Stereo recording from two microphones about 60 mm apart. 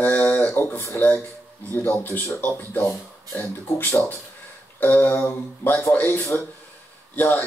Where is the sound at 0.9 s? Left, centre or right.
Left.